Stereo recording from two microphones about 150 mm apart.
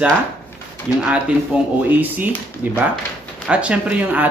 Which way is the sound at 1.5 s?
10° right (ahead or behind).